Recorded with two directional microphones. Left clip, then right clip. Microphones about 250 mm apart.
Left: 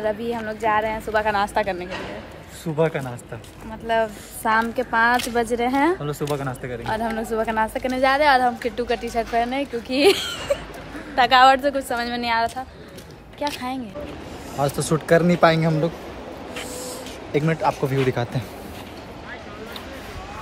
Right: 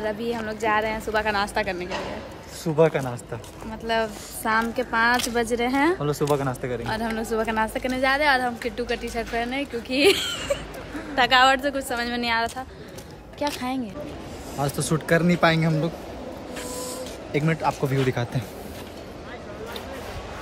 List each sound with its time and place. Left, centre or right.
0.0 s a woman's voice: centre
2.6 s a woman's voice: centre
6.3 s a woman's voice: centre
17.3 s a woman's voice: centre